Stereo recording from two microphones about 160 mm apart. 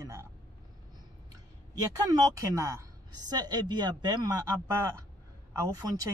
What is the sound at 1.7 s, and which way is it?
Speech, 20° right (ahead or behind).